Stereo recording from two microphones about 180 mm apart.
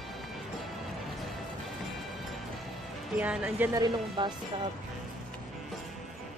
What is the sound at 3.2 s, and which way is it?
Speech, 10° right (ahead or behind).